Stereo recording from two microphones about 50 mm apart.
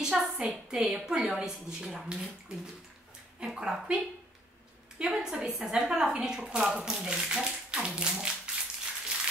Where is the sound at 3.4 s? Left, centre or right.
Centre.